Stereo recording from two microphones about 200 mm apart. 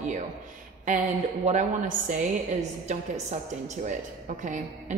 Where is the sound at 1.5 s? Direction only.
40° right (ahead or behind).